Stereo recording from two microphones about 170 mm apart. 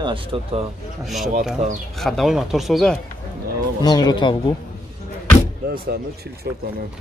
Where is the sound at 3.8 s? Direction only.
25° left (ahead or behind).